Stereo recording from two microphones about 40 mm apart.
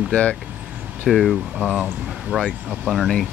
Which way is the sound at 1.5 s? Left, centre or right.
Right.